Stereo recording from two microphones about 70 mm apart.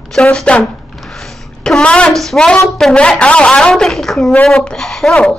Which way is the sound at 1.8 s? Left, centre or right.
Centre.